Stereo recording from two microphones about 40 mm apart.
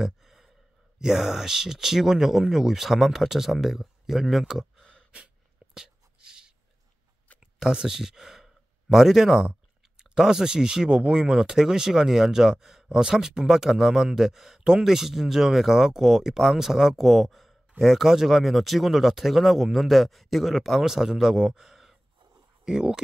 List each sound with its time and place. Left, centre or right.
0.0 s gasp: centre
0.9 s speech: centre
5.8 s a sound: centre
7.3 s speech: centre
20.8 s speech: centre